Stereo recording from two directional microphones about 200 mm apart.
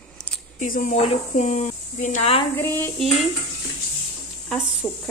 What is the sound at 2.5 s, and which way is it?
Dishes, 10° left (ahead or behind).